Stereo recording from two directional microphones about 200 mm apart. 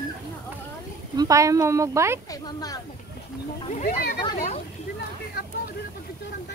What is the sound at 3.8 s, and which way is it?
Speech, 40° left (ahead or behind).